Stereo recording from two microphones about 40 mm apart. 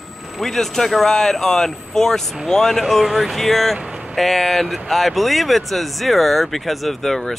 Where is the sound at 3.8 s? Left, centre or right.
Right.